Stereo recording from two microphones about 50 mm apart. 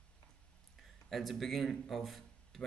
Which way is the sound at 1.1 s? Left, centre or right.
Centre.